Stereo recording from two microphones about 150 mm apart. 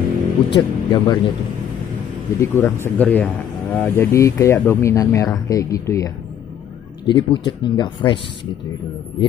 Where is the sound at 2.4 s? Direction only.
15° left (ahead or behind); by 8.1 s 30° left (ahead or behind).